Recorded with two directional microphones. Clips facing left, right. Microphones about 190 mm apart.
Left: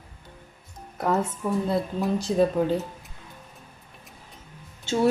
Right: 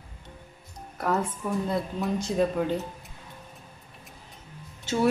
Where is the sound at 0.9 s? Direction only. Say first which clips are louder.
Left 2 dB; 20° left (ahead or behind).